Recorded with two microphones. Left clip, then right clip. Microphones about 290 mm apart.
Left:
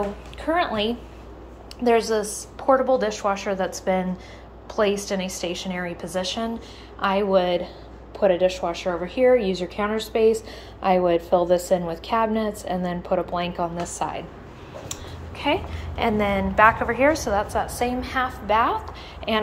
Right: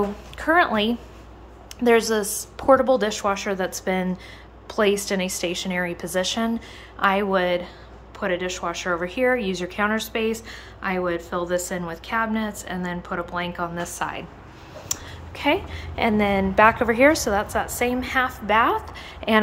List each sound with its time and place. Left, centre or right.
0.4 s a woman's voice: centre
1.8 s a woman's voice: centre
13.6 s a woman's voice: centre
13.9 s a woman's voice: centre